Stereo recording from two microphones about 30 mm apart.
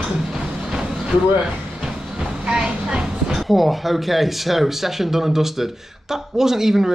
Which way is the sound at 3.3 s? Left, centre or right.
Centre.